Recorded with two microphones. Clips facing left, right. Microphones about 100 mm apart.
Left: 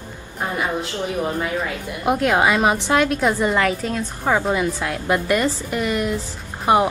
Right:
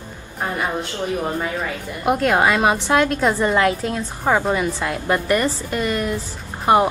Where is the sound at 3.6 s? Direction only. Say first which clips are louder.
Right 2 dB; 15° right (ahead or behind).